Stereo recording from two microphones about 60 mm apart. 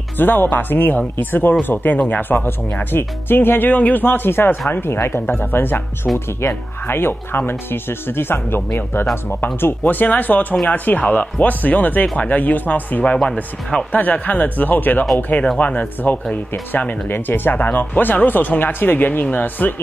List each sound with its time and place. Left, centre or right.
0.2 s speech: left
13.0 s speech: centre
13.9 s speech: left